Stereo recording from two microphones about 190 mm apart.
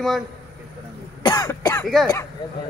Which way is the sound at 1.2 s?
15° left (ahead or behind).